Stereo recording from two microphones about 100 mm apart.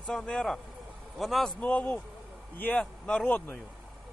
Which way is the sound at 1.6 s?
15° left (ahead or behind).